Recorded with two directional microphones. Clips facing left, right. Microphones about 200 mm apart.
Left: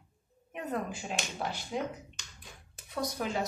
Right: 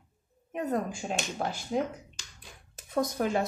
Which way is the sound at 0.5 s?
40° right (ahead or behind).